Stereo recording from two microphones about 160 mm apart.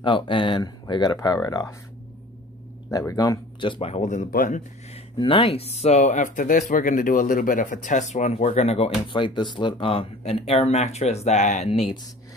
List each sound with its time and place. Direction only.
0.0 s speech: 30° left (ahead or behind)
2.9 s speech: 20° left (ahead or behind); by 5.0 s 50° left (ahead or behind)
5.1 s speech: 30° left (ahead or behind)